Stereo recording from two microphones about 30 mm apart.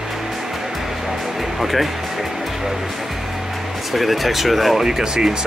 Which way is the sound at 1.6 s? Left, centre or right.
Centre.